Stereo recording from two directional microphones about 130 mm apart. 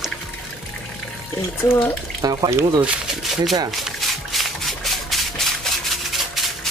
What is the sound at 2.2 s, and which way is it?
Speech, 30° right (ahead or behind).